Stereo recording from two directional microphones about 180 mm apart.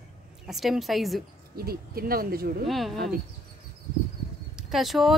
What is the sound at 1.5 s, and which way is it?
Speech, 60° right (ahead or behind).